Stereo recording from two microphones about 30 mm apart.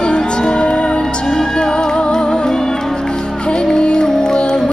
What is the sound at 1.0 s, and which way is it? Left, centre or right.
Music, centre.